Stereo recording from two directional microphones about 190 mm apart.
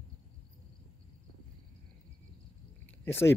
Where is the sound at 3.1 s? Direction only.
10° left (ahead or behind).